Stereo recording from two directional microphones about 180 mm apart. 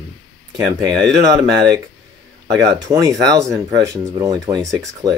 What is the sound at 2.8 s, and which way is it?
Speech, 20° right (ahead or behind).